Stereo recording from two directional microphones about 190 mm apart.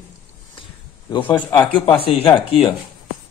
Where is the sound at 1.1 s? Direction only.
25° left (ahead or behind).